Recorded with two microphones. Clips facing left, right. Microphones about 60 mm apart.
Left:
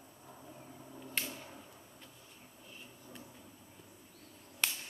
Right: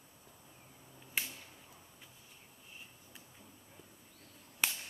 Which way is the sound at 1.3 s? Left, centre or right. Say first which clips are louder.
Left 6 dB; left.